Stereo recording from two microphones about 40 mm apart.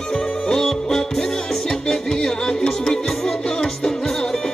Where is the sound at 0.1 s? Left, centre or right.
Centre.